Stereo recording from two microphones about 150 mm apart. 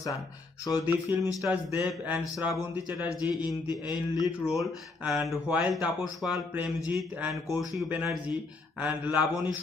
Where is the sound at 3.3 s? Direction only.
30° left (ahead or behind).